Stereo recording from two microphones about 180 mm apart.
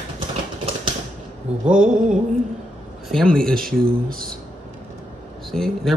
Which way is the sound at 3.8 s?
55° right (ahead or behind).